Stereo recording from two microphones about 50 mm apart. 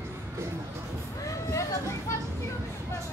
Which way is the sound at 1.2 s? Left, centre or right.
Left.